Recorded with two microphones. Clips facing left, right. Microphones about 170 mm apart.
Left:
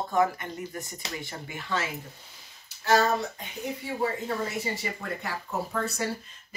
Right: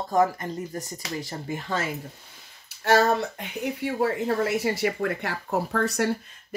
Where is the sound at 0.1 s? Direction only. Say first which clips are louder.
Right 4 dB; 40° right (ahead or behind).